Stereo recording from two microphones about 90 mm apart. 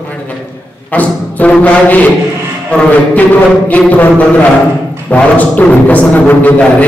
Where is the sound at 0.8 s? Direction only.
15° left (ahead or behind).